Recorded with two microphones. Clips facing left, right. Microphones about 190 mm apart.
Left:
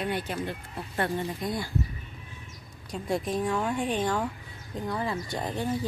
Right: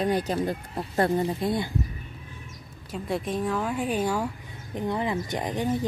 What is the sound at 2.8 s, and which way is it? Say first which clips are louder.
A woman's voice: even; centre (ahead or behind).